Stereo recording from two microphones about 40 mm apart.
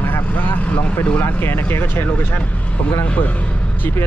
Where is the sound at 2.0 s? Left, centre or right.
Left.